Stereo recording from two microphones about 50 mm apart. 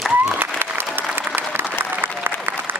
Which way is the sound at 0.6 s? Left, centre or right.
Right.